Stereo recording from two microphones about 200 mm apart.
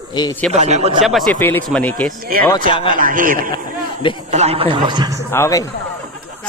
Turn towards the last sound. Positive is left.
turn(degrees=15)  # may be behind; listen again after turning